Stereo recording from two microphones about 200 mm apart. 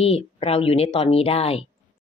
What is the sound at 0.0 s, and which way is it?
Speech, 30° left (ahead or behind).